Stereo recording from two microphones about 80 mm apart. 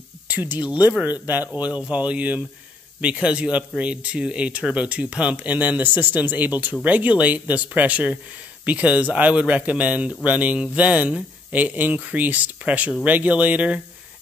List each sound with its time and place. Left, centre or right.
0.3 s speech: right